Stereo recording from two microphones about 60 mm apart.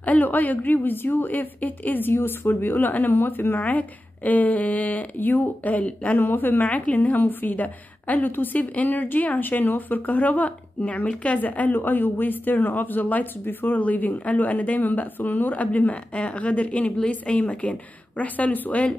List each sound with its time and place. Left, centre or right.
0.0 s a woman's voice: left
6.1 s a woman's voice: left